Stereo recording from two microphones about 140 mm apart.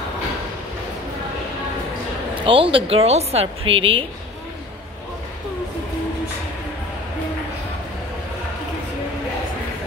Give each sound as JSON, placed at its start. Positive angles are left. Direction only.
{"t": 2.4, "sound": "speech", "side_deg": -40}